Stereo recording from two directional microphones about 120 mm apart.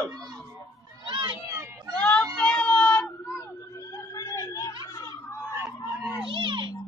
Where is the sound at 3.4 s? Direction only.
25° left (ahead or behind).